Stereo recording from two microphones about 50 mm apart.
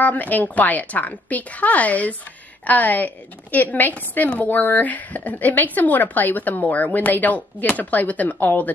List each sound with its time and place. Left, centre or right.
0.0 s a woman's voice: left